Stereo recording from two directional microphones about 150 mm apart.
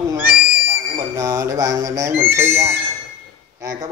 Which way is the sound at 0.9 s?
20° right (ahead or behind).